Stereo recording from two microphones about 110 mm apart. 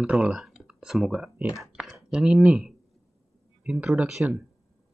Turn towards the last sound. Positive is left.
turn(degrees=-10)  # may be behind; listen again after turning